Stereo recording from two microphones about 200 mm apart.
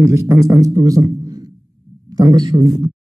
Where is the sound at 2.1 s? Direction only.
20° right (ahead or behind).